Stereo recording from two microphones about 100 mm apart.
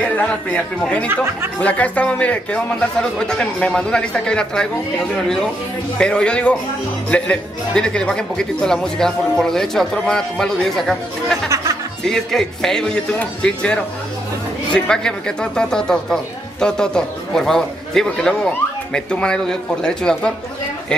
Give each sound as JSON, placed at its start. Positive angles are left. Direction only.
{"t": 0.1, "sound": "speech", "side_deg": 15}
{"t": 1.1, "sound": "speech", "side_deg": -25}
{"t": 1.6, "sound": "speech", "side_deg": 15}
{"t": 5.9, "sound": "speech", "side_deg": 10}